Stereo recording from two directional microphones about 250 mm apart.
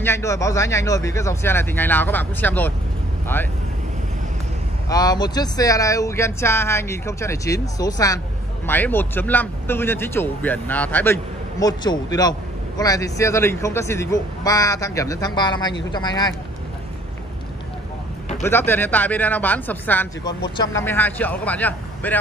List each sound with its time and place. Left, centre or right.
0.0 s a man's voice: centre
4.8 s a man's voice: centre
18.4 s a man's voice: centre